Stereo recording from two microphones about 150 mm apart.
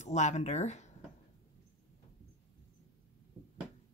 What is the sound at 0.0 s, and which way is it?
Speech, 50° left (ahead or behind).